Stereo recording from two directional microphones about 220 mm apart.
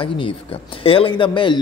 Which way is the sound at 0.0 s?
25° left (ahead or behind).